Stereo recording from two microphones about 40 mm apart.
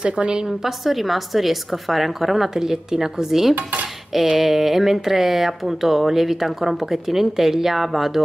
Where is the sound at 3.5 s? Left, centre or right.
Right.